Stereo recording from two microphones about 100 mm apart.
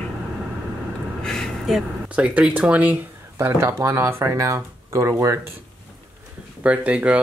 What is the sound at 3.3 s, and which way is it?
Speech, 25° right (ahead or behind).